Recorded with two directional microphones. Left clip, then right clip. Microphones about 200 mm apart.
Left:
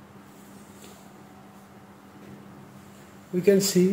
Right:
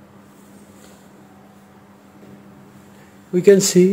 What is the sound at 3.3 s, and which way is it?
Speech, 45° right (ahead or behind).